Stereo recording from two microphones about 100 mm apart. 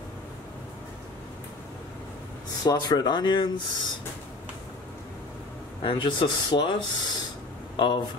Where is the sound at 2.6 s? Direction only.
45° left (ahead or behind).